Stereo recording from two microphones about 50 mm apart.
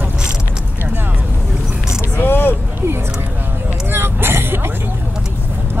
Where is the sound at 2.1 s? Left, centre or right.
Left.